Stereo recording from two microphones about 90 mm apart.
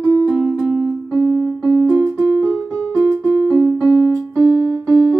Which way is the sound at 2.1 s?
5° right (ahead or behind).